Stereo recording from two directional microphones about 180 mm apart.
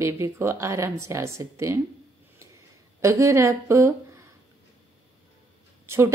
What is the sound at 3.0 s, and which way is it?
Speech, 15° right (ahead or behind).